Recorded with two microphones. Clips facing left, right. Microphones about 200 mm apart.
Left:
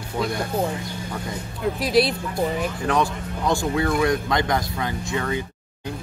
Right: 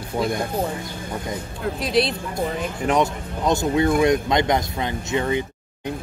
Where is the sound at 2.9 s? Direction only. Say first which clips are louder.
Right 4 dB; 20° right (ahead or behind).